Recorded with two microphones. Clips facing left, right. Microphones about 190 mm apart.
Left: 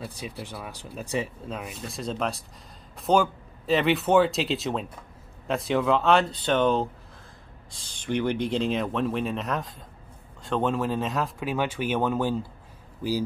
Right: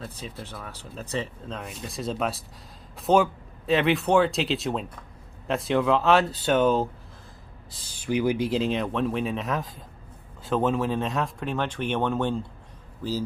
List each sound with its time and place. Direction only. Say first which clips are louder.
0.0 s speech: left 1 dB; 15° left (ahead or behind)